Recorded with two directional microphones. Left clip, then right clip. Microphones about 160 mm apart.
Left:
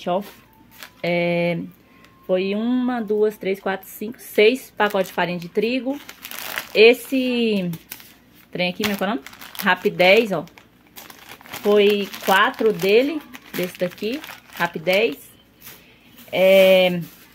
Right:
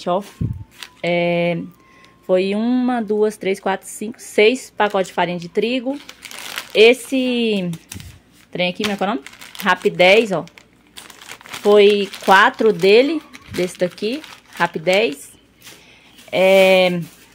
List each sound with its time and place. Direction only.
0.7 s speech: 10° right (ahead or behind)
2.2 s speech: 25° right (ahead or behind)
11.4 s speech: 30° right (ahead or behind)
16.3 s speech: 20° right (ahead or behind)